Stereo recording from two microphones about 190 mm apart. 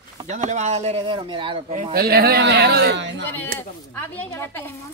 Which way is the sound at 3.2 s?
10° left (ahead or behind).